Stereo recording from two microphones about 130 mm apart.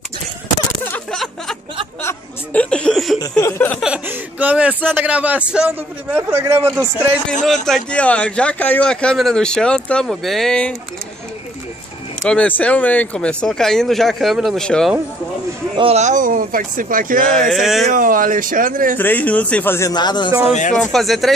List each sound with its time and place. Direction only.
1.1 s a sound: 5° left (ahead or behind)
3.2 s a sound: 20° left (ahead or behind)
3.8 s a man's voice: 10° right (ahead or behind)
7.4 s speech: 5° left (ahead or behind)
12.3 s speech: 10° left (ahead or behind)
15.7 s speech: 45° right (ahead or behind)
16.0 s speech: 80° right
17.3 s speech: 5° left (ahead or behind)
17.9 s speech: 90° right
18.9 s speech: 15° left (ahead or behind)
19.9 s speech: 35° left (ahead or behind)
20.7 s speech: 5° left (ahead or behind)